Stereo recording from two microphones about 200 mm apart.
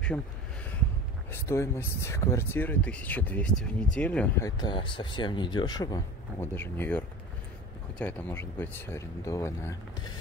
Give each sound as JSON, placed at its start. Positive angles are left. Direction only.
{"t": 0.1, "sound": "speech", "side_deg": 10}
{"t": 1.3, "sound": "speech", "side_deg": 15}
{"t": 4.5, "sound": "speech", "side_deg": 20}